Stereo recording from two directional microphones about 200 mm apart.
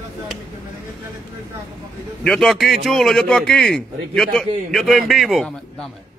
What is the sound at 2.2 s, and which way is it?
A man's voice, 5° left (ahead or behind).